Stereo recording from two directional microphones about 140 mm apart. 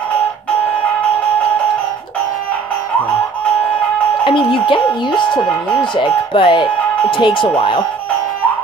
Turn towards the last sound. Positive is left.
turn(degrees=35)  # may be behind; listen again after turning